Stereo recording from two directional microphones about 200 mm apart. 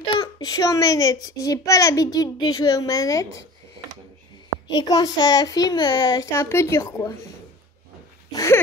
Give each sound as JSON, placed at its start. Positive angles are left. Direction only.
{"t": 0.2, "sound": "a child's voice", "side_deg": 20}
{"t": 4.7, "sound": "a child's voice", "side_deg": 20}
{"t": 8.3, "sound": "dog", "side_deg": 15}